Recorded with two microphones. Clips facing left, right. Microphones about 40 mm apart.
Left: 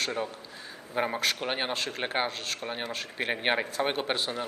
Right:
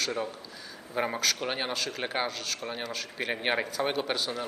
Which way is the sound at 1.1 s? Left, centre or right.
Left.